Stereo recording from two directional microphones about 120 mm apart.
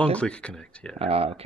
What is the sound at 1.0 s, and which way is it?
Speech, 55° right (ahead or behind).